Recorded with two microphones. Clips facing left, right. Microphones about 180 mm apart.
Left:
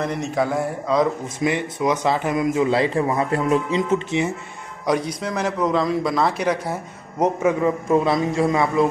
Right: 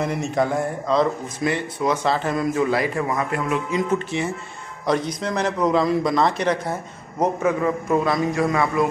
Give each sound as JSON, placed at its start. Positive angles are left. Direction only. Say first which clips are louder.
{"t": 0.0, "sound": "speech", "louder": "even", "side_deg": 0}
{"t": 4.8, "sound": "speech", "louder": "even", "side_deg": 10}